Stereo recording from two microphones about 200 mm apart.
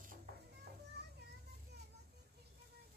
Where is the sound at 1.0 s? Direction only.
55° right (ahead or behind).